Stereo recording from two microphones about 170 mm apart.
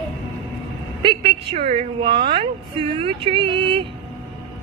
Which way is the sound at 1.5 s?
35° right (ahead or behind).